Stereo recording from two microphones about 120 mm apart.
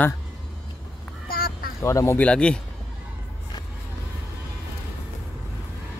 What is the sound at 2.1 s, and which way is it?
Speech, 10° left (ahead or behind).